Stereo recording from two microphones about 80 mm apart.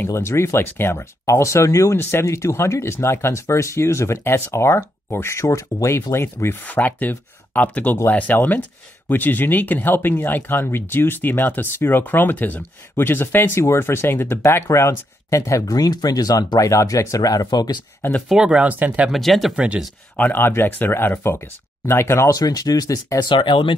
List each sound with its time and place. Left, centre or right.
0.0 s speech: left
6.6 s speech: left
18.3 s speech: centre
19.0 s speech: centre
19.5 s speech: centre
20.2 s speech: left
22.3 s speech: left
23.1 s speech: left